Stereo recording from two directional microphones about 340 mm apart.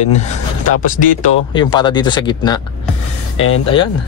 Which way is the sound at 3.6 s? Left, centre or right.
Centre.